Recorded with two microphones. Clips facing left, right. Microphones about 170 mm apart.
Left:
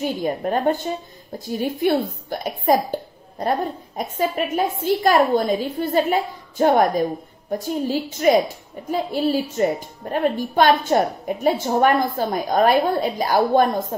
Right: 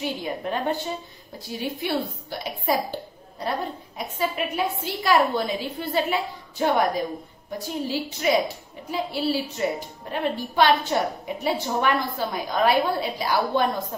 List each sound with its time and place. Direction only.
0.0 s speech: 45° left (ahead or behind)